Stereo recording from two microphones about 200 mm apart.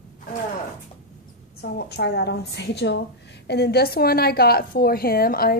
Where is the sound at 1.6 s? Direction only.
55° left (ahead or behind).